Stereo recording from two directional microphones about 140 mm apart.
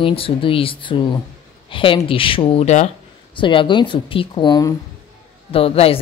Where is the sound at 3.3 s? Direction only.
35° left (ahead or behind).